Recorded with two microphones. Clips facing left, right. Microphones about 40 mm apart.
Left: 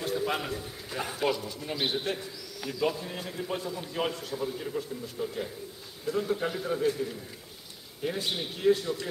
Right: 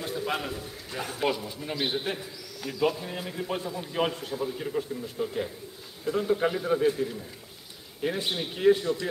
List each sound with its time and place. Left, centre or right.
0.0 s a man's voice: centre
1.3 s a man's voice: centre
4.4 s a man's voice: centre